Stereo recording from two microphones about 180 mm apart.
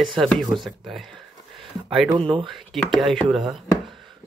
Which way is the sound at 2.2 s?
30° right (ahead or behind).